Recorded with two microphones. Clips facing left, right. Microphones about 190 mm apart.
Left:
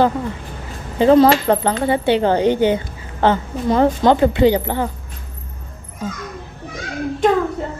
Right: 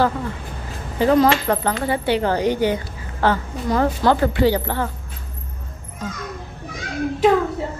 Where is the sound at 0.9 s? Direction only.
25° left (ahead or behind).